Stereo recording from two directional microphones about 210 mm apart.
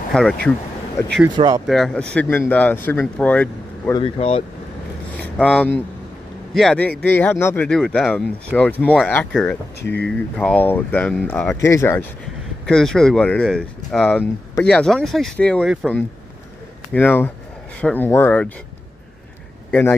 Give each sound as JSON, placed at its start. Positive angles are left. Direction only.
{"t": 0.1, "sound": "speech", "side_deg": 5}
{"t": 1.3, "sound": "speech", "side_deg": -20}
{"t": 1.7, "sound": "speech", "side_deg": 0}
{"t": 3.9, "sound": "speech", "side_deg": 25}
{"t": 5.2, "sound": "speech", "side_deg": 5}
{"t": 19.7, "sound": "a man's voice", "side_deg": 10}